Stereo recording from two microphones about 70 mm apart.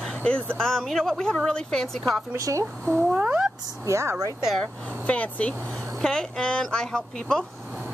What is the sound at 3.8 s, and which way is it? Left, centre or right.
Speech, right.